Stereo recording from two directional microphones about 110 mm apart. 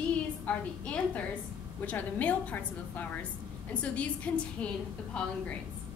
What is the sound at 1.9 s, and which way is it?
A woman's voice, 15° left (ahead or behind).